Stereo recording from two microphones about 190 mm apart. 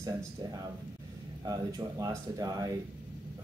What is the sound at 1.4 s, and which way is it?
Speech, 20° right (ahead or behind).